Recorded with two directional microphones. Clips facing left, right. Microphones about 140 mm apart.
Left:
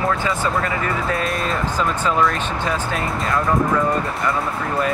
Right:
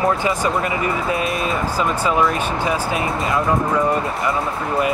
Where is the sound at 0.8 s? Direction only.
5° right (ahead or behind).